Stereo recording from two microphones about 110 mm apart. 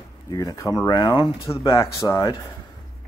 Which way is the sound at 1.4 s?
30° left (ahead or behind).